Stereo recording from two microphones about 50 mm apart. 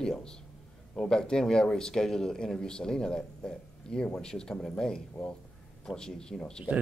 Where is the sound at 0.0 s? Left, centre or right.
Centre.